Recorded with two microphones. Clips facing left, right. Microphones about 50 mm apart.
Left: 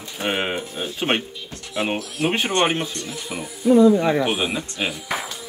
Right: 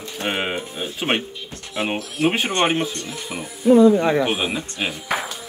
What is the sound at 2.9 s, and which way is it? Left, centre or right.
Speech, right.